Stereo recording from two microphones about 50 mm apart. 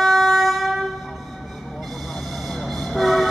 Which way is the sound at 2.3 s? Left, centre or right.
Centre.